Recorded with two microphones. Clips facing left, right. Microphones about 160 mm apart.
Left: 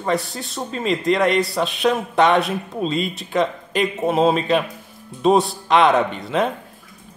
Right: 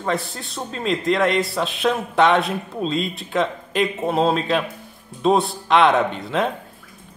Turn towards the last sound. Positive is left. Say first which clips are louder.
# left 1 dB
turn(degrees=0)  # may be behind; listen again after turning